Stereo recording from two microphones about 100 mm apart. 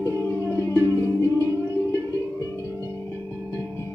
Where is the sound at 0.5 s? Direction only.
25° left (ahead or behind).